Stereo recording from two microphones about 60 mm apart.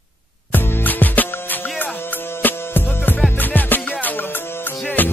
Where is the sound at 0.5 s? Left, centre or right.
Left.